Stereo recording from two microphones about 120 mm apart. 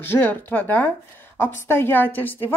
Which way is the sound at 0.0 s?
15° left (ahead or behind).